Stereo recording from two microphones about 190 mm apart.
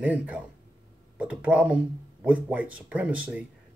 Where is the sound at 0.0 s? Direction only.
10° right (ahead or behind).